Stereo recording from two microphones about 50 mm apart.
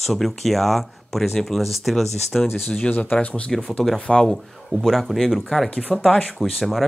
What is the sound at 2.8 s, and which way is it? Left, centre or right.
Speech, left.